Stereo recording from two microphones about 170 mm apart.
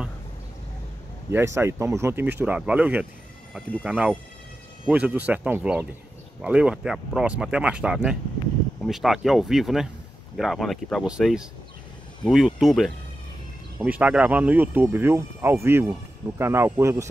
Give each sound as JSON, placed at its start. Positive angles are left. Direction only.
{"t": 1.3, "sound": "speech", "side_deg": -15}